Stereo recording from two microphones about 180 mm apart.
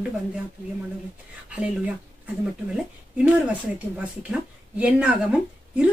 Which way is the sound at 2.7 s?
5° right (ahead or behind).